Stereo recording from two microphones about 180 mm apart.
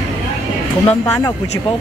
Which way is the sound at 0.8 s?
5° left (ahead or behind).